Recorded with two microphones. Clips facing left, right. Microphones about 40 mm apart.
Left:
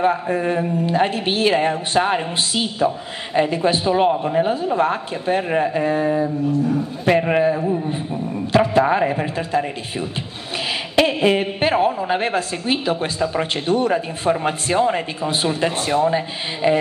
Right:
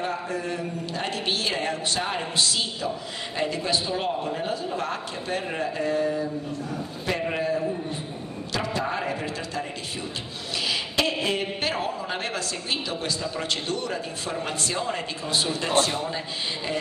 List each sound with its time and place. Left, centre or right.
0.0 s a woman's voice: left
11.0 s a woman's voice: left